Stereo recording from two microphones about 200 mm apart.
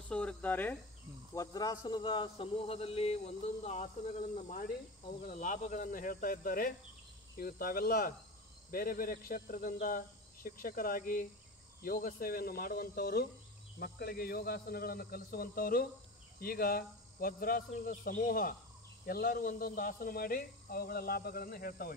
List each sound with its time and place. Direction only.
0.1 s speech: 5° left (ahead or behind); by 21.9 s 45° left (ahead or behind)